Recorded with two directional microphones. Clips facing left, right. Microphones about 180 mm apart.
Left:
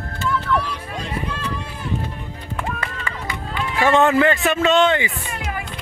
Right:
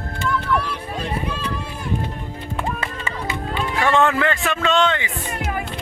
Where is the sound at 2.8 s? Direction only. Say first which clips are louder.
Right 1 dB; 25° right (ahead or behind).